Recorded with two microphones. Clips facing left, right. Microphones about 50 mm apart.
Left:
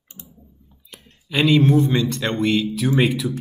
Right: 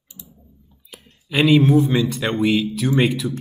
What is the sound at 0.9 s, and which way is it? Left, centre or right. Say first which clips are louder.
Speech: right 1 dB; centre.